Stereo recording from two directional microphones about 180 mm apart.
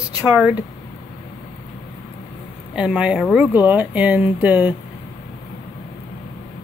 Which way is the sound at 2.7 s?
5° right (ahead or behind).